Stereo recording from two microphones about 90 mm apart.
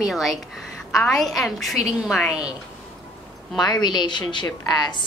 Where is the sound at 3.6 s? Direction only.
50° left (ahead or behind).